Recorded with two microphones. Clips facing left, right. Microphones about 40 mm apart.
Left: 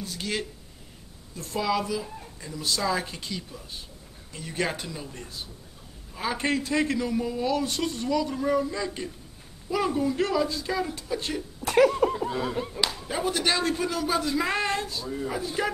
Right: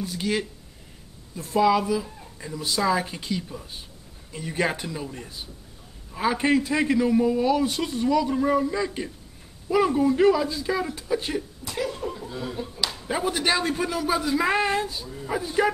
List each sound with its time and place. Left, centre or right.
0.0 s a man's voice: centre
1.6 s a man's voice: centre
11.6 s speech: left
13.1 s a man's voice: centre